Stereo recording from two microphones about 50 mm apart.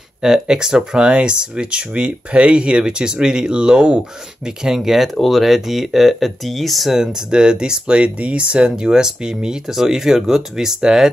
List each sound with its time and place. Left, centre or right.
0.2 s speech: centre